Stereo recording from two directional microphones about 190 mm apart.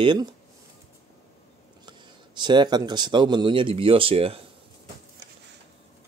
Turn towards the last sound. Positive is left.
turn(degrees=-30)  # may be behind; listen again after turning